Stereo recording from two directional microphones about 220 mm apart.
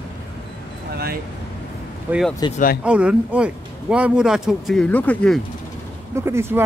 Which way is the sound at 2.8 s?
5° right (ahead or behind).